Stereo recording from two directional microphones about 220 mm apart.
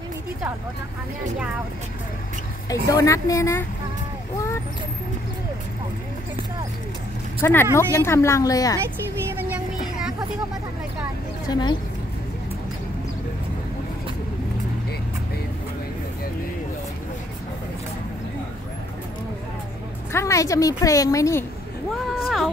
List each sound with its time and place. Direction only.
2.7 s a woman's voice: 15° left (ahead or behind)
7.7 s a woman's voice: 10° left (ahead or behind)
9.4 s a sound: 5° right (ahead or behind)
11.4 s speech: 20° left (ahead or behind)
20.1 s a woman's voice: 10° left (ahead or behind)
22.1 s a sound: centre (ahead or behind)